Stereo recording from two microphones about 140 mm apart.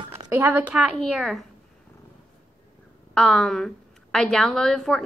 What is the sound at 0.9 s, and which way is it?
Speech, 5° left (ahead or behind).